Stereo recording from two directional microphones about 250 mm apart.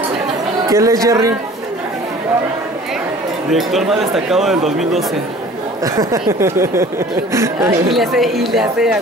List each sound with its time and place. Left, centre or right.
0.7 s speech: centre
3.5 s speech: centre
5.9 s speech: centre
7.9 s speech: centre